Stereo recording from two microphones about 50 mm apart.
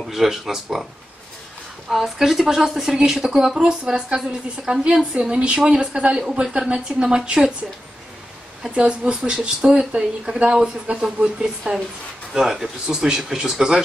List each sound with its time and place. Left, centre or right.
0.1 s speech: centre
1.9 s speech: centre
8.6 s speech: right